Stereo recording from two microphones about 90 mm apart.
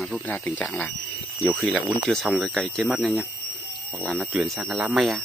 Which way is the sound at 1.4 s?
5° right (ahead or behind).